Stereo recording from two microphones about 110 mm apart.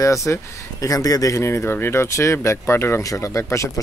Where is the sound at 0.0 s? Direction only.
30° left (ahead or behind).